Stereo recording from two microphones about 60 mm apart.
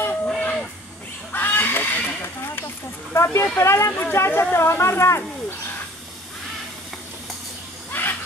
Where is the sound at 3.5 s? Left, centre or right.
Left.